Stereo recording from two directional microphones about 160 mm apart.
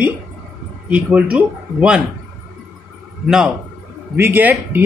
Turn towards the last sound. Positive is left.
turn(degrees=-10)  # may be behind; listen again after turning